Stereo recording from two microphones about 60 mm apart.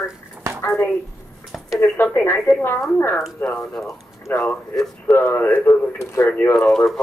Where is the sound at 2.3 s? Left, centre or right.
Centre.